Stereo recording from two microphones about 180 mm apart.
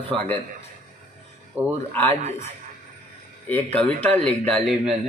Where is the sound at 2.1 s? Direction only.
40° right (ahead or behind).